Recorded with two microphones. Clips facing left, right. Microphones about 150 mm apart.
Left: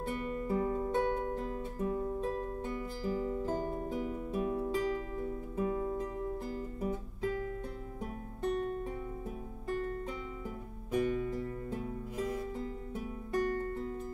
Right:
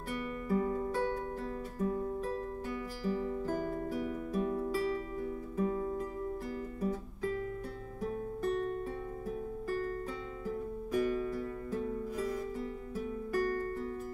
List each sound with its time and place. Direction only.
0.1 s music: 25° left (ahead or behind)
10.9 s music: 25° left (ahead or behind)